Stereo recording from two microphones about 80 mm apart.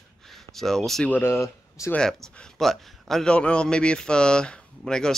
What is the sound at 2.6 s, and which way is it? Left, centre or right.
A man's voice, centre.